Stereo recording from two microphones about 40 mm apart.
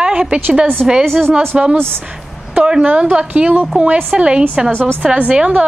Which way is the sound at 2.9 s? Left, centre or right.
Right.